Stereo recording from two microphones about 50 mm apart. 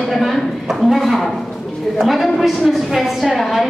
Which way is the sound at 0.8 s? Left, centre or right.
Centre.